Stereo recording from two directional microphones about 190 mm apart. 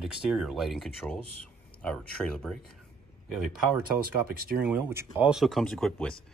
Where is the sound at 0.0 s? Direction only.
Centre (ahead or behind).